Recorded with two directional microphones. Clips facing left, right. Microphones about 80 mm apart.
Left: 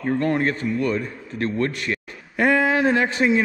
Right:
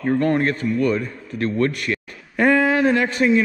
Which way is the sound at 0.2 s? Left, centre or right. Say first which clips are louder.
Right 2 dB; right.